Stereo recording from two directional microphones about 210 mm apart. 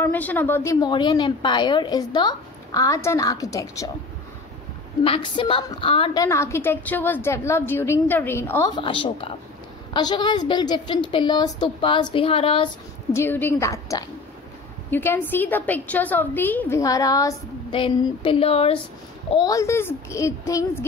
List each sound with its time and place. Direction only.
0.0 s a woman's voice: 10° left (ahead or behind)
5.0 s a woman's voice: 25° left (ahead or behind)
6.2 s a woman's voice: 15° left (ahead or behind)
13.1 s a woman's voice: 10° left (ahead or behind); by 18.8 s 30° left (ahead or behind)
19.3 s a woman's voice: 15° left (ahead or behind)